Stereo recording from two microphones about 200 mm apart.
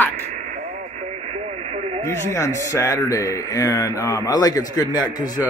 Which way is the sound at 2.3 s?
15° left (ahead or behind).